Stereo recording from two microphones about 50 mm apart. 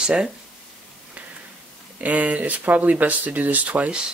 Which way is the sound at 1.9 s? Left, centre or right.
Right.